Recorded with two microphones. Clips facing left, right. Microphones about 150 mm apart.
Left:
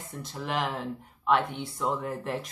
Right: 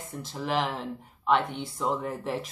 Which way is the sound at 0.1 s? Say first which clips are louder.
Right 3 dB; centre (ahead or behind).